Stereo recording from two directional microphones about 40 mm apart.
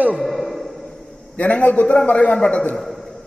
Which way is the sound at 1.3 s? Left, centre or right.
Left.